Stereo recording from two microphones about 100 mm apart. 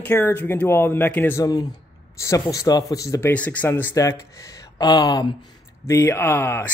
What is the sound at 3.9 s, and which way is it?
Speech, 35° left (ahead or behind).